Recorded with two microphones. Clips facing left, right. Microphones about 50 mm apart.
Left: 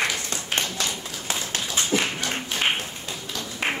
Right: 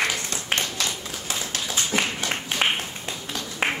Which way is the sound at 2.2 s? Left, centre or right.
Right.